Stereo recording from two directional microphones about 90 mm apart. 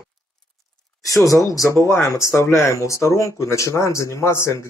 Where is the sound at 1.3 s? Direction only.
40° left (ahead or behind).